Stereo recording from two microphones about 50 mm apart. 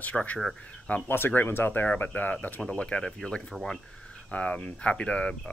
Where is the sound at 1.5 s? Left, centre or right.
Left.